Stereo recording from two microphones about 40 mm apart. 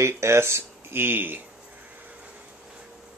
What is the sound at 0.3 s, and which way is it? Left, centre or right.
Speech, right.